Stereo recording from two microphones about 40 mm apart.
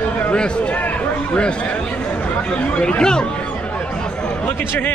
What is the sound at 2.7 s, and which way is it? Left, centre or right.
Speech, left.